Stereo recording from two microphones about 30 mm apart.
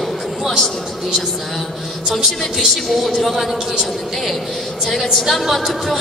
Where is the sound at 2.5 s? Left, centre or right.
Centre.